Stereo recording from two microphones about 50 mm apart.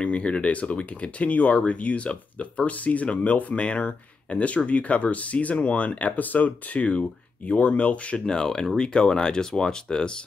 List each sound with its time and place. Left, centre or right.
0.0 s speech: left
8.3 s speech: centre